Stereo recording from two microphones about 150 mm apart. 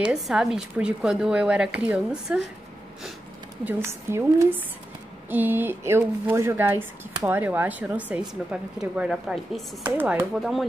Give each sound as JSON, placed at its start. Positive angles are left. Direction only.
{"t": 0.0, "sound": "speech", "side_deg": -5}
{"t": 3.6, "sound": "speech", "side_deg": -15}